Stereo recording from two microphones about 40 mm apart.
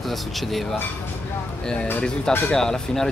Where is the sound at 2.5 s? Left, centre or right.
Centre.